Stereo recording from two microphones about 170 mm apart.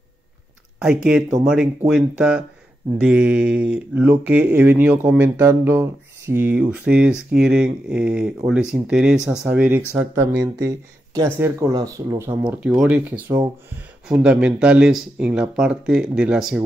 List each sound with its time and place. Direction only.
0.7 s speech: 5° right (ahead or behind); by 12.4 s 20° right (ahead or behind)
12.4 s speech: 5° right (ahead or behind)